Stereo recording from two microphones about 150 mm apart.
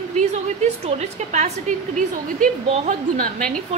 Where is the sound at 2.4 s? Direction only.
65° right (ahead or behind).